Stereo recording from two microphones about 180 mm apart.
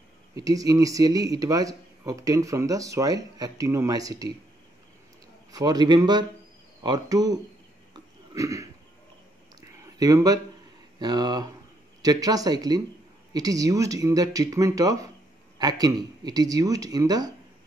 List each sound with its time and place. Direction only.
0.4 s speech: 20° right (ahead or behind)
5.5 s speech: 20° right (ahead or behind)
7.9 s burping: 15° right (ahead or behind)
9.6 s a sound: 20° right (ahead or behind)
11.0 s speech: 25° right (ahead or behind)